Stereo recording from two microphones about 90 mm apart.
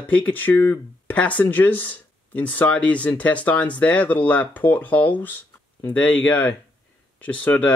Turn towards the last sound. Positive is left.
turn(degrees=15)  # may be behind; listen again after turning